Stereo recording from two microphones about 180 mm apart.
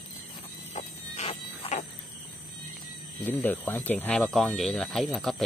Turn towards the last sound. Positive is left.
turn(degrees=0)  # may be behind; listen again after turning